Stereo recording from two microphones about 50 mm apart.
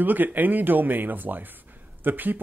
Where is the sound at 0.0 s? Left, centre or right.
Right.